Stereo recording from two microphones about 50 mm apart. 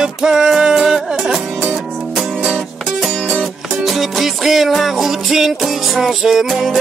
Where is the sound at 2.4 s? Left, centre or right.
Centre.